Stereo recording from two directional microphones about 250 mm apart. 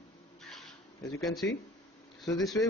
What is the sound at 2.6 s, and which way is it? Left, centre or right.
Speech, centre.